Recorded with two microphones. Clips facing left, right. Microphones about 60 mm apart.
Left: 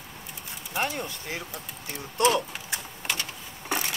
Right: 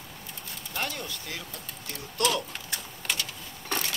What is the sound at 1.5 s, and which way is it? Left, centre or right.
Speech, centre.